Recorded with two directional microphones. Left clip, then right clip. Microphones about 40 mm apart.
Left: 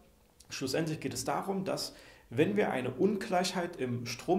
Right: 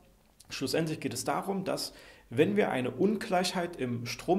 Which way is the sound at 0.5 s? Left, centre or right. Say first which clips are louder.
Right 2 dB; right.